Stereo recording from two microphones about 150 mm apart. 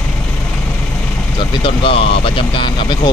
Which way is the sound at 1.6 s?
35° left (ahead or behind).